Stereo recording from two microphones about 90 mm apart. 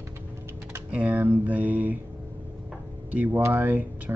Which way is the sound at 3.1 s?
20° right (ahead or behind).